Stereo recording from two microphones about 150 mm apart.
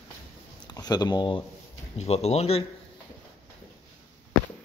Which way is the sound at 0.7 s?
30° left (ahead or behind).